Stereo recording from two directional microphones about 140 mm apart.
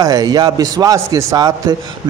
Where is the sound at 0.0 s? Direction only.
30° right (ahead or behind).